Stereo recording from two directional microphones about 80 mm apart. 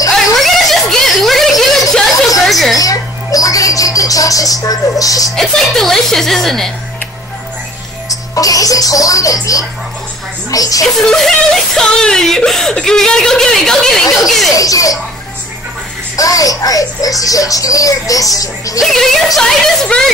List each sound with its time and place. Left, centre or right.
0.1 s a sound: centre
2.8 s music: left
5.3 s a woman's voice: centre
8.1 s a child's voice: left
11.0 s a woman's voice: centre
14.6 s a child's voice: left
16.2 s a child's voice: left
18.8 s a woman's voice: centre